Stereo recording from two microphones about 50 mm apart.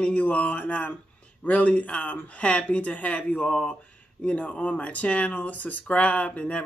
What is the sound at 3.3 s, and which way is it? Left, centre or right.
Speech, centre.